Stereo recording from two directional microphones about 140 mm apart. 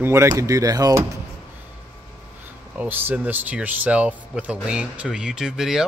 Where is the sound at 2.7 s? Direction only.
10° right (ahead or behind).